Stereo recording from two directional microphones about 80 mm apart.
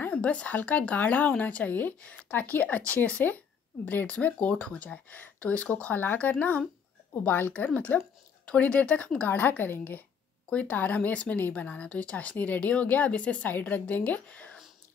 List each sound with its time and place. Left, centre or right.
0.1 s speech: centre